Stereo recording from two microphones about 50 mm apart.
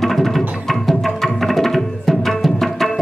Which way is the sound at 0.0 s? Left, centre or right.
Centre.